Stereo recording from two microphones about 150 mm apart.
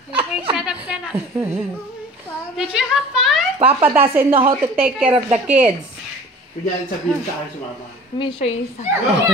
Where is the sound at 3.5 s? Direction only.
40° right (ahead or behind).